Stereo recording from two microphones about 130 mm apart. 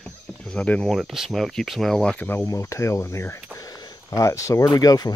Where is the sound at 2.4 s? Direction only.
25° left (ahead or behind).